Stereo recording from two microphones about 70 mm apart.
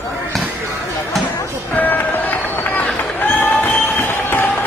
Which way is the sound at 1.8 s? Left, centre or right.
Left.